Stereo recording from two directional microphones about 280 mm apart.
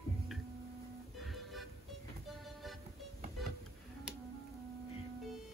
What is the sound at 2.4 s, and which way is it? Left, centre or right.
Vehicle, centre.